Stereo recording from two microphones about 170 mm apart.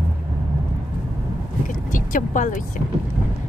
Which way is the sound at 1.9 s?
50° left (ahead or behind).